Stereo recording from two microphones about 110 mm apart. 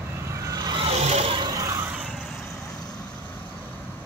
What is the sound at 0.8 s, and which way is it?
Vehicle, 70° right (ahead or behind).